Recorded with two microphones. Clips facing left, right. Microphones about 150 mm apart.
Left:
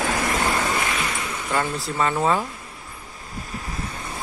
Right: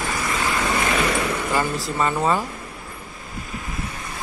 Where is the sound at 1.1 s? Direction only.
65° right (ahead or behind).